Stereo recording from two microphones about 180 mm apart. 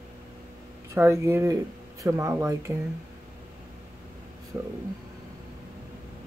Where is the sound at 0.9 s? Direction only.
15° right (ahead or behind).